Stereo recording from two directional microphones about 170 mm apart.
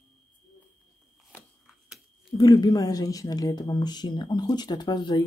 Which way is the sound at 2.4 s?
20° left (ahead or behind).